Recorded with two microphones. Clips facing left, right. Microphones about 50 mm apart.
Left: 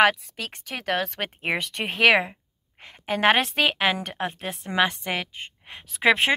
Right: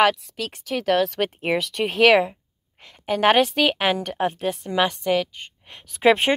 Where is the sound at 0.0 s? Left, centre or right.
Centre.